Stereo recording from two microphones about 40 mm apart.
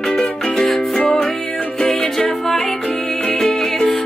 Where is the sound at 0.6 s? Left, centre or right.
Centre.